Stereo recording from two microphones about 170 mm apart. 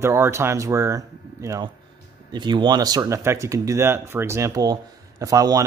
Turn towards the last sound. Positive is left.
turn(degrees=-20)  # may be behind; listen again after turning